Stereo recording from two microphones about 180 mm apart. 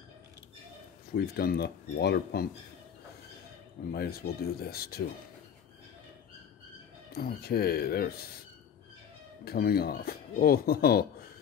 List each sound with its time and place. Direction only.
1.1 s speech: 60° left (ahead or behind)
3.9 s speech: 60° left (ahead or behind)
7.1 s speech: 60° left (ahead or behind)
9.4 s speech: 55° left (ahead or behind)